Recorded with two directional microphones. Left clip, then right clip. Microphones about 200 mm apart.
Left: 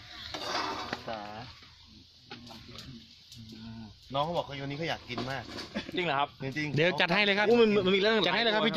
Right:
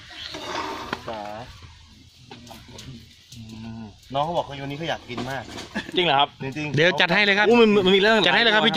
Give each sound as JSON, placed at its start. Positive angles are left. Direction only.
{"t": 0.3, "sound": "a sound", "side_deg": 40}
{"t": 4.1, "sound": "speech", "side_deg": 10}
{"t": 5.8, "sound": "speech", "side_deg": -35}
{"t": 6.6, "sound": "speech", "side_deg": 0}
{"t": 7.5, "sound": "a man's voice", "side_deg": -50}
{"t": 8.3, "sound": "speech", "side_deg": -5}